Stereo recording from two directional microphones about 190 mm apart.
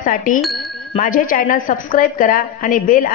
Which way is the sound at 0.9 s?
45° left (ahead or behind).